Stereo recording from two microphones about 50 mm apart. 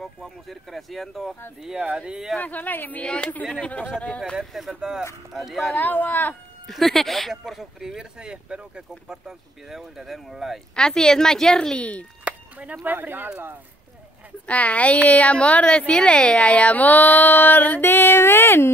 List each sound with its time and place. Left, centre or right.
0.0 s speech: centre
1.6 s speech: centre
2.4 s speech: left
3.0 s a woman's voice: left
4.4 s speech: centre
5.8 s speech: left
6.7 s speech: centre
7.8 s speech: centre
10.8 s a woman's voice: centre
11.7 s a woman's voice: left
12.3 s a sound: right
12.8 s speech: right
14.4 s a woman's voice: left
17.8 s speech: left